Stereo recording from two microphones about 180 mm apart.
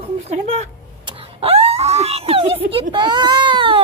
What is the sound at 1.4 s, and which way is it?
Screaming, 35° right (ahead or behind).